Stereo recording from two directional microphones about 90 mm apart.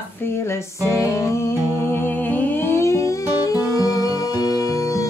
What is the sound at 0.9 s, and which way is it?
Music, 35° left (ahead or behind).